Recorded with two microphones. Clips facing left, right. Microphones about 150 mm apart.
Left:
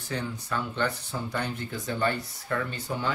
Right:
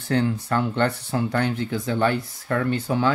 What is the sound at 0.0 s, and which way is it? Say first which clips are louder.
Speech: right 11 dB; 65° right (ahead or behind).